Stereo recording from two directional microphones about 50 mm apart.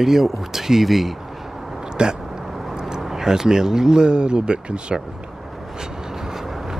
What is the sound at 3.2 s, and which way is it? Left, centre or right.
Speech, centre.